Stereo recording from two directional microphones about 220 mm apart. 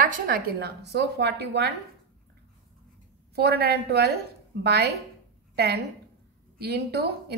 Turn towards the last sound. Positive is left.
turn(degrees=-45)  # may be behind; listen again after turning